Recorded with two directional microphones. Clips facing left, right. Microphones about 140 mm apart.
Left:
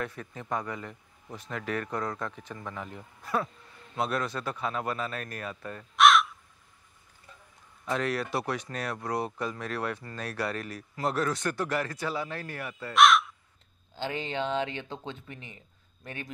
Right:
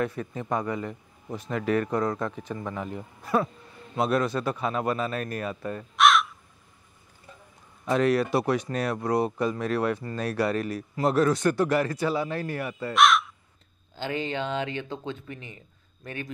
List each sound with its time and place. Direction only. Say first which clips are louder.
0.0 s speech: right 7 dB; 15° right (ahead or behind)
5.9 s crow: even; centre (ahead or behind)
7.8 s speech: right 7 dB; 15° right (ahead or behind)
12.9 s speech: even; centre (ahead or behind)
13.9 s speech: right 3 dB; 25° left (ahead or behind)